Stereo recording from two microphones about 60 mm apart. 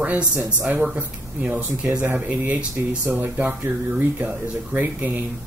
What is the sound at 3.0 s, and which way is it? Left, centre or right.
Speech, right.